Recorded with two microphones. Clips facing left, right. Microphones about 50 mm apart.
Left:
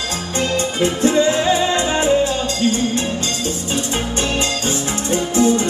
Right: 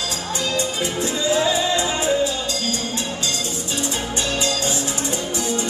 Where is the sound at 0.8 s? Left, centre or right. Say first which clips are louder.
Left 11 dB; left.